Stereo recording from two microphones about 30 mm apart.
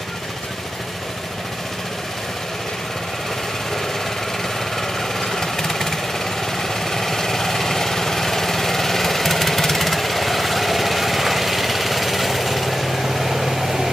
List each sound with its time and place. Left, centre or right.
4.7 s vehicle: centre